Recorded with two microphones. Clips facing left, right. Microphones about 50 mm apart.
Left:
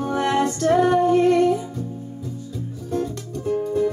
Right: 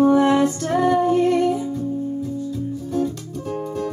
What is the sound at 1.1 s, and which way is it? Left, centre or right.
Music, left.